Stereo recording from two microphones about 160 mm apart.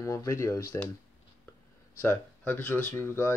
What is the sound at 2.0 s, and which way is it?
Speech, 15° left (ahead or behind).